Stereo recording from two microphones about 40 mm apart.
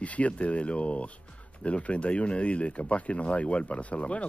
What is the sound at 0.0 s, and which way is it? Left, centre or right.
Speech, left.